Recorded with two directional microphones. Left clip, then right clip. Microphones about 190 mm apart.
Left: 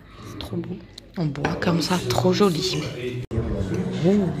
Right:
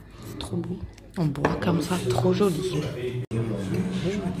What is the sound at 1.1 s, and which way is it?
Speech, centre (ahead or behind).